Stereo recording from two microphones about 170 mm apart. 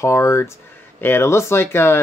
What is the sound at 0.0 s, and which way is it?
Speech, 15° left (ahead or behind).